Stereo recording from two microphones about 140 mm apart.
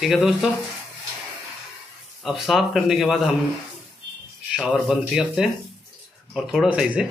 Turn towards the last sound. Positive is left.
turn(degrees=-5)  # may be behind; listen again after turning